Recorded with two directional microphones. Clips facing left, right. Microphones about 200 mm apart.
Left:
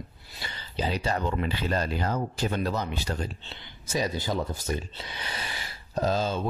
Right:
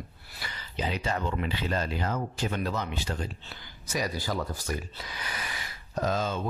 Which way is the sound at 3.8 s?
25° left (ahead or behind).